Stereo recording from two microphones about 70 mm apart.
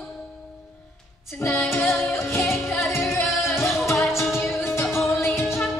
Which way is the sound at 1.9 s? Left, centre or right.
Left.